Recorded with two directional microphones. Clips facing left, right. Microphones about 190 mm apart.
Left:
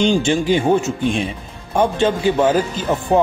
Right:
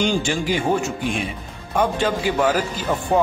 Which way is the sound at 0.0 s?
25° left (ahead or behind).